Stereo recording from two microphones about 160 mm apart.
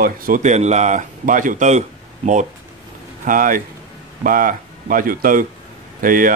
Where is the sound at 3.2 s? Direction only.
60° right (ahead or behind).